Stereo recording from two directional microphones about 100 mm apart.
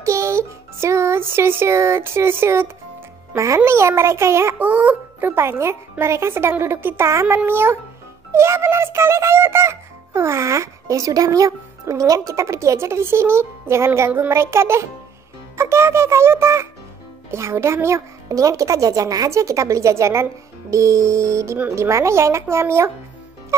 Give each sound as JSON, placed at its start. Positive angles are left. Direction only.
{"t": 0.0, "sound": "a child's voice", "side_deg": -30}
{"t": 4.6, "sound": "speech", "side_deg": -15}